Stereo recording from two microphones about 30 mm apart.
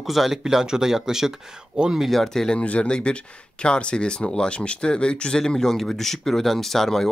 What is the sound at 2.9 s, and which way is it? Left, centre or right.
Speech, left.